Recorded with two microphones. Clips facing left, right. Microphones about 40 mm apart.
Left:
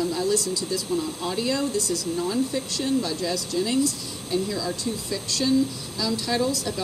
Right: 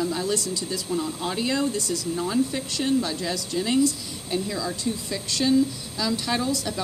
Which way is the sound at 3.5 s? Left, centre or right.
Centre.